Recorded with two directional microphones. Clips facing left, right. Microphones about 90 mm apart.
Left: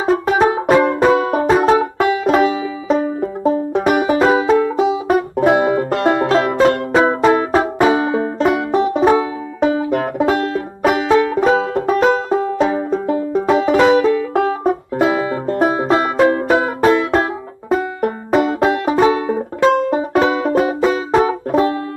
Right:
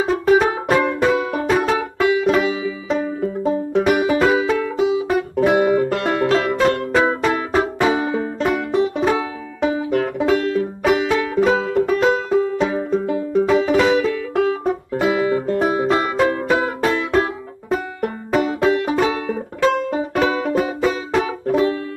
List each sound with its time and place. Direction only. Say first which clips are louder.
0.4 s music: left 5 dB; 30° left (ahead or behind)
2.9 s banjo: left 5 dB; 35° left (ahead or behind)
4.1 s music: left 4 dB; 25° left (ahead or behind)
16.8 s banjo: left 4 dB; 30° left (ahead or behind)